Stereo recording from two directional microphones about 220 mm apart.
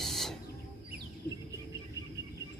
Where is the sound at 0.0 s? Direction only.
Centre (ahead or behind).